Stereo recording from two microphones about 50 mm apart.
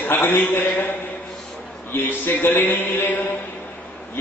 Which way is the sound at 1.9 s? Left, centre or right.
Left.